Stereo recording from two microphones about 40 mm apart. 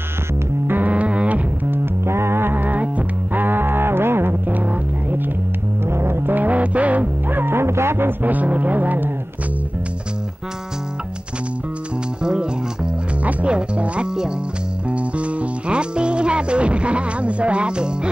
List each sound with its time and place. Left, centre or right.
0.7 s music: right
0.9 s music: right
1.7 s music: right
4.5 s music: right
5.9 s music: right
6.3 s music: right
7.2 s music: right
8.2 s a sound: right
12.2 s music: right
13.5 s music: right